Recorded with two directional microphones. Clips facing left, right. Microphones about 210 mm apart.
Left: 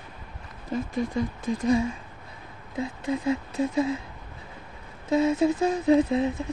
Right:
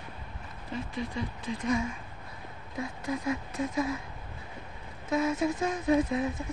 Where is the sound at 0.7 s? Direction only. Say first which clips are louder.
Left 7 dB; 45° left (ahead or behind).